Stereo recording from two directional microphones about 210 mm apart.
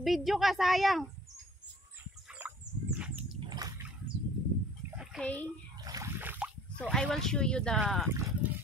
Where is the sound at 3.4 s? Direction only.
20° right (ahead or behind).